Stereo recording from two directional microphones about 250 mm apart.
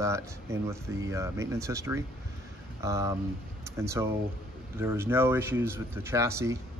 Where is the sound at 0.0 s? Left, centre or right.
Centre.